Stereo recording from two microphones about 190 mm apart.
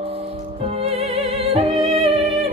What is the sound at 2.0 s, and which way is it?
Music, centre (ahead or behind).